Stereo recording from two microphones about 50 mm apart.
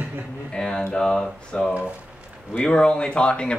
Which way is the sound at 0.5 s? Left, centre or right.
Centre.